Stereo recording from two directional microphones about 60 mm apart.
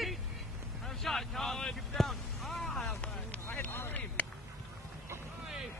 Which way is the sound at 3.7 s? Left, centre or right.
Left.